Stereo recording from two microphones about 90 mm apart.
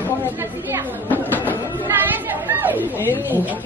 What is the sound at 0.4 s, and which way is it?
A man's voice, 25° right (ahead or behind).